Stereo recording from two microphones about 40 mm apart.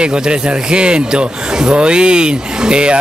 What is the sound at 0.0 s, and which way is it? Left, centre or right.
Speech, right.